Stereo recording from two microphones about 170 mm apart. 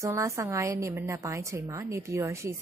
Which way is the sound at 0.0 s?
20° right (ahead or behind).